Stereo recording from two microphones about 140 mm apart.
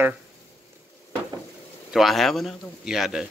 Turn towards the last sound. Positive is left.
turn(degrees=-5)  # may be behind; listen again after turning